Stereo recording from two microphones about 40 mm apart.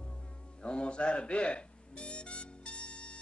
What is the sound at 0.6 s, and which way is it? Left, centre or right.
Music, left.